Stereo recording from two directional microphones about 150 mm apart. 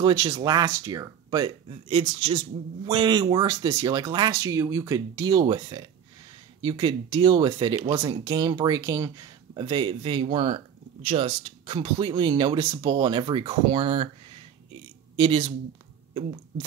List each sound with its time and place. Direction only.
0.0 s speech: 25° right (ahead or behind)
1.9 s speech: 40° right (ahead or behind)
15.1 s speech: 35° right (ahead or behind)